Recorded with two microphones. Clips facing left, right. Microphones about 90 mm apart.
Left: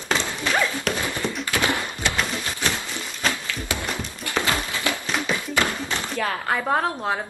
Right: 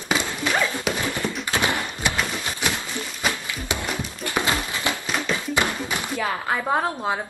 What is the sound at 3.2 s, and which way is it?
Music, 20° right (ahead or behind).